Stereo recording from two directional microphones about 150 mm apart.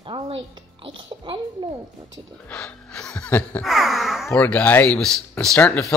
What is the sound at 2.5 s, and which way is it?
Speech, 5° left (ahead or behind).